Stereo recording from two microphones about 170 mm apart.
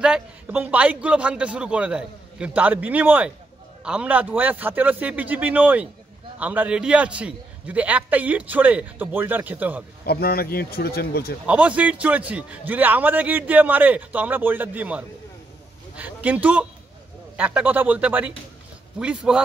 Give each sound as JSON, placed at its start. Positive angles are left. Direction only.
{"t": 0.0, "sound": "a man's voice", "side_deg": -5}
{"t": 10.0, "sound": "speech", "side_deg": 65}
{"t": 11.4, "sound": "a man's voice", "side_deg": -5}